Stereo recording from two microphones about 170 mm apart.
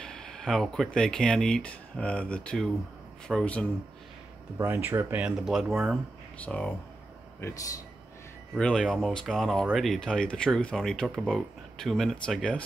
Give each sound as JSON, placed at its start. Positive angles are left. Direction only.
{"t": 0.0, "sound": "speech", "side_deg": 5}
{"t": 4.6, "sound": "speech", "side_deg": -15}
{"t": 7.4, "sound": "speech", "side_deg": 20}
{"t": 8.5, "sound": "speech", "side_deg": 5}